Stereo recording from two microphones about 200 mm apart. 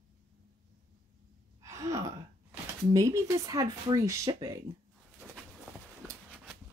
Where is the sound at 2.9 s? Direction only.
15° right (ahead or behind).